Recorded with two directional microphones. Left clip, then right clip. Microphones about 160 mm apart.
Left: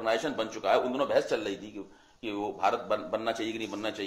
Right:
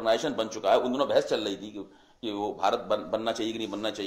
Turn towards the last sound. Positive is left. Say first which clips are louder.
# right 2 dB
turn(degrees=-50)  # may be behind; listen again after turning